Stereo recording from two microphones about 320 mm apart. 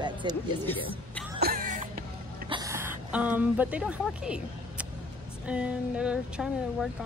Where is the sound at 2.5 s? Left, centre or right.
Centre.